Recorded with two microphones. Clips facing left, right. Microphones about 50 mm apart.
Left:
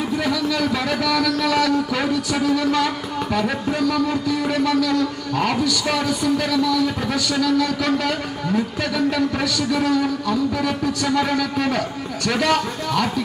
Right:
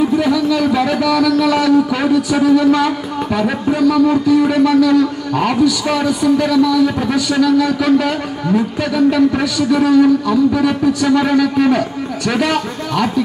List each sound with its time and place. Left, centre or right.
0.2 s a man's voice: centre